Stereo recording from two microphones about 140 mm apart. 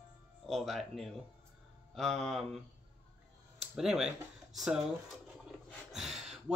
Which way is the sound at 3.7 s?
5° right (ahead or behind).